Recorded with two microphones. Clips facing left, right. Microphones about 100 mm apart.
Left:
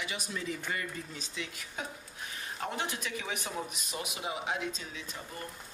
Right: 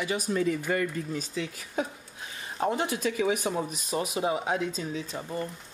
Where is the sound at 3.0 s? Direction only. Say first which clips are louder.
Right 11 dB; 40° right (ahead or behind).